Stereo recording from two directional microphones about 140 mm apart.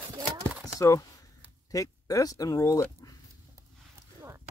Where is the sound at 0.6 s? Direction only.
25° left (ahead or behind).